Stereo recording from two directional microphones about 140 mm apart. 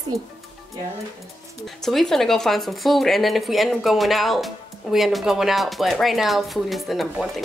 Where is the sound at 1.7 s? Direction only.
5° left (ahead or behind).